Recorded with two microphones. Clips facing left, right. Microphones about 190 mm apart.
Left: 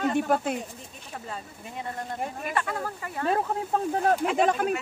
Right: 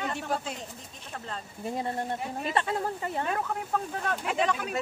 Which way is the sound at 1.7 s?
35° right (ahead or behind).